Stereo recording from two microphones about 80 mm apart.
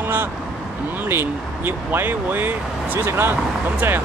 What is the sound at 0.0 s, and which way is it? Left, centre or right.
Vehicle, right.